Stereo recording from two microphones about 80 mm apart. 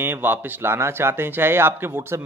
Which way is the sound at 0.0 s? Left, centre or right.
Right.